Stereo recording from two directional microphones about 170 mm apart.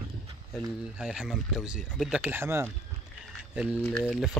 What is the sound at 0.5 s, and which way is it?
Speech, 5° right (ahead or behind).